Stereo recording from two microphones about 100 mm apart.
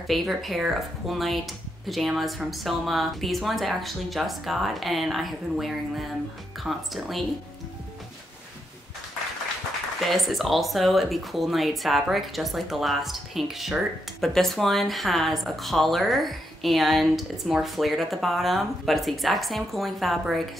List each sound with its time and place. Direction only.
0.0 s a woman's voice: centre (ahead or behind)
10.0 s a woman's voice: centre (ahead or behind)